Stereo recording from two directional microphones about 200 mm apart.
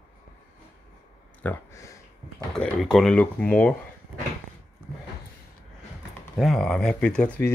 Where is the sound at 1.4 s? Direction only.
10° left (ahead or behind).